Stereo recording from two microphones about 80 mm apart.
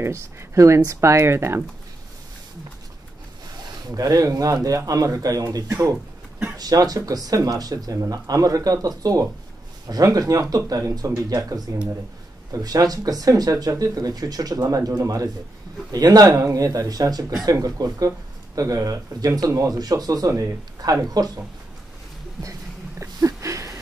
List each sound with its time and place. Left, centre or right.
0.0 s speech: right
3.9 s speech: right
22.4 s a sound: right